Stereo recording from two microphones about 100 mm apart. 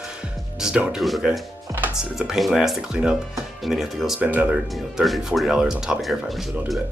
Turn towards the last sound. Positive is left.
turn(degrees=0)  # may be behind; listen again after turning